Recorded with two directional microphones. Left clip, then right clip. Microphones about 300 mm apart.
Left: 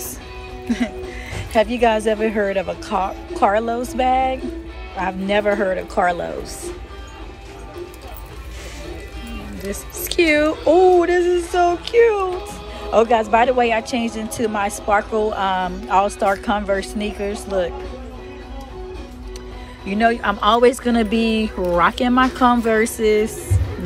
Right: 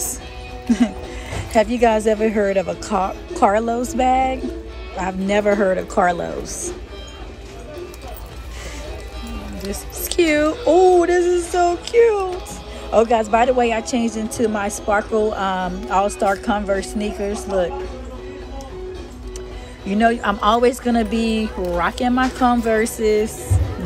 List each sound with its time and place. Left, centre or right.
0.7 s a woman's voice: centre
10.0 s a woman's voice: centre
19.9 s a woman's voice: centre